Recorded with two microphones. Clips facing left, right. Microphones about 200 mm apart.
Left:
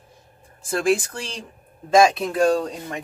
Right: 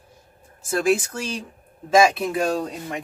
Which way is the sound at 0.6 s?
5° right (ahead or behind).